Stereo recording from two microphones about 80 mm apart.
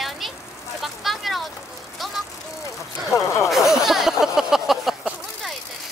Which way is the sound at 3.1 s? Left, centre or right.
Left.